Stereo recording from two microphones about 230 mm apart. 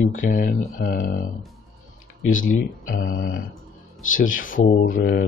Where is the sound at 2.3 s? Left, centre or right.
Left.